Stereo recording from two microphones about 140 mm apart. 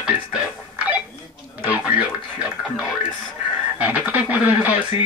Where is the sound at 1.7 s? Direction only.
10° right (ahead or behind).